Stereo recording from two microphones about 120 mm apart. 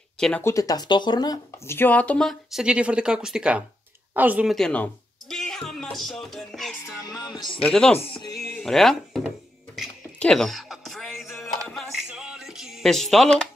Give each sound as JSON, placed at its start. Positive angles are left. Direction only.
{"t": 0.4, "sound": "speech", "side_deg": 25}
{"t": 1.7, "sound": "speech", "side_deg": 15}
{"t": 2.6, "sound": "speech", "side_deg": -10}
{"t": 4.5, "sound": "speech", "side_deg": 5}
{"t": 5.3, "sound": "music", "side_deg": 5}
{"t": 7.1, "sound": "speech", "side_deg": 35}
{"t": 7.6, "sound": "speech", "side_deg": 5}
{"t": 7.9, "sound": "speech", "side_deg": 55}
{"t": 8.5, "sound": "speech", "side_deg": 5}
{"t": 10.1, "sound": "music", "side_deg": 5}